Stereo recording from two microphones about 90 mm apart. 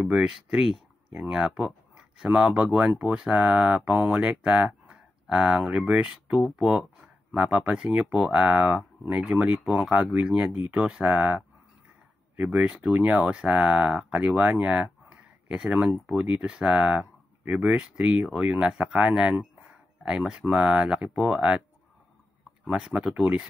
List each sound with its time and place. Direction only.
0.0 s speech: 5° right (ahead or behind)
12.4 s speech: 5° right (ahead or behind)
12.9 s speech: 15° right (ahead or behind)
22.7 s speech: 10° right (ahead or behind)